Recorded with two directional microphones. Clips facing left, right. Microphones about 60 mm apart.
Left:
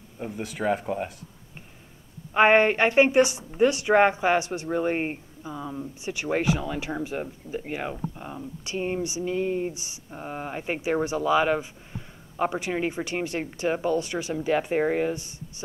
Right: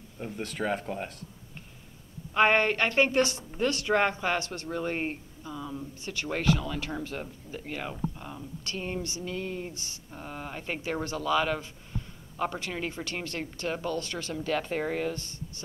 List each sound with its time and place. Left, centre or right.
0.2 s speech: centre
2.3 s speech: centre